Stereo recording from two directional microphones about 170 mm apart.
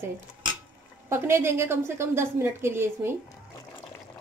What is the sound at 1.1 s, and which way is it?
Speech, 15° right (ahead or behind).